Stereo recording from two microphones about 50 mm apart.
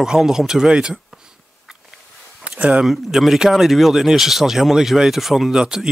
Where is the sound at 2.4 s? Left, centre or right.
Right.